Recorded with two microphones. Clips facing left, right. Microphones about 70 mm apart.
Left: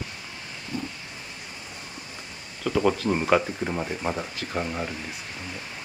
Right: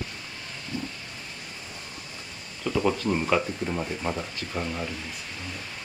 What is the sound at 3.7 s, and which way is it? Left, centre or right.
Speech, centre.